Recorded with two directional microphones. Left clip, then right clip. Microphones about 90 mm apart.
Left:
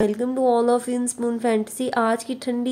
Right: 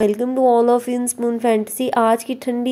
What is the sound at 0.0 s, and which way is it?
Speech, 30° right (ahead or behind).